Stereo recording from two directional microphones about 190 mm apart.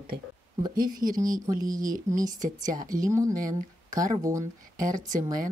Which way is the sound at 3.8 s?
45° right (ahead or behind).